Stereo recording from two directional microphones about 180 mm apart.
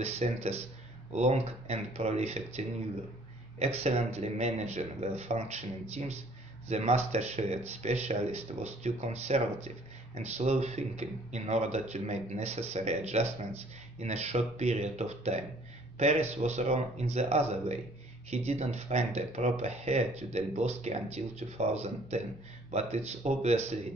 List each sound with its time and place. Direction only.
0.0 s speech: 35° right (ahead or behind)